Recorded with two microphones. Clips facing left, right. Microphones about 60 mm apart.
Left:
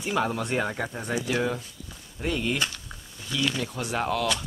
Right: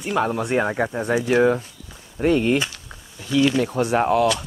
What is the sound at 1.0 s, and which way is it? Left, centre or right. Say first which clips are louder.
Speech: right 10 dB; right.